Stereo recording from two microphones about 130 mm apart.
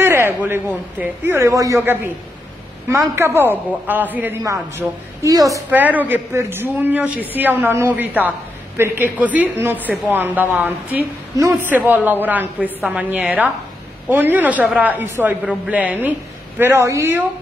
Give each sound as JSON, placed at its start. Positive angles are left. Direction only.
{"t": 0.0, "sound": "a man's voice", "side_deg": -20}
{"t": 4.4, "sound": "a woman's voice", "side_deg": -25}
{"t": 5.7, "sound": "a man's voice", "side_deg": -10}
{"t": 11.3, "sound": "a woman's voice", "side_deg": -25}
{"t": 11.7, "sound": "a man's voice", "side_deg": -15}